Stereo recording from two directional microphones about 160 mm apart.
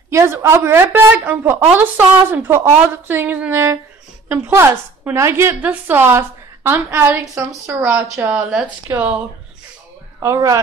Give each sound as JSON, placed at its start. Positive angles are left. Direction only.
{"t": 0.1, "sound": "a woman's voice", "side_deg": -15}
{"t": 10.2, "sound": "a woman's voice", "side_deg": -20}